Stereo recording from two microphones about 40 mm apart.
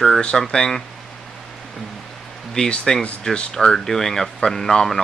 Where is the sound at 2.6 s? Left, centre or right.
Left.